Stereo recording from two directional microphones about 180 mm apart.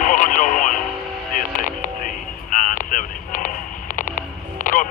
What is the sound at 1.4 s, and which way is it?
Vehicle, 45° left (ahead or behind).